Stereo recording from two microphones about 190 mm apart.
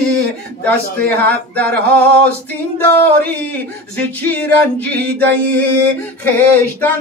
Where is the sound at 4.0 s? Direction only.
10° left (ahead or behind).